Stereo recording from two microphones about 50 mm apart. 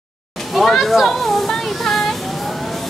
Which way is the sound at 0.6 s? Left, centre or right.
Centre.